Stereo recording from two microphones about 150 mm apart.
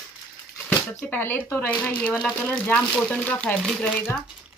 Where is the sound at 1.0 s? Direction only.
15° left (ahead or behind).